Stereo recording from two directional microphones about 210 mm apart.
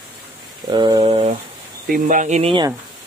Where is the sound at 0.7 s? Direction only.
20° right (ahead or behind).